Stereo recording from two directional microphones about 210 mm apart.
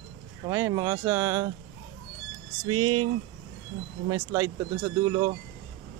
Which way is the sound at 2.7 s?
20° right (ahead or behind).